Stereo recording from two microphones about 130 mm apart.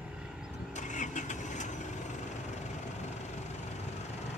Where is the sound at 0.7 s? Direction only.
70° left (ahead or behind).